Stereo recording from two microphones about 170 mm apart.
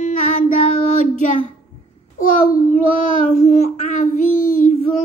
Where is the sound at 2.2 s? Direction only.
55° left (ahead or behind).